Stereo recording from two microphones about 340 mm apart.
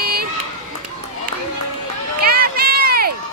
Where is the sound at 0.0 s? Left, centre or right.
Right.